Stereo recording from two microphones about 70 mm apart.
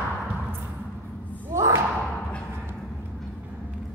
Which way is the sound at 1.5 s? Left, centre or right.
Right.